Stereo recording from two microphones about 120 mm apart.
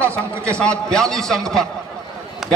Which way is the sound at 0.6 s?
5° left (ahead or behind).